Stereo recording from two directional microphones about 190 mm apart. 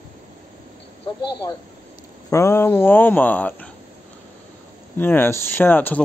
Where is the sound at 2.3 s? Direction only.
15° left (ahead or behind).